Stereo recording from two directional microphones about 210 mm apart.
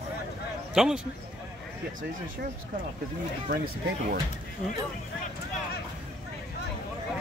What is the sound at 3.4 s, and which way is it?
Speech, 45° right (ahead or behind).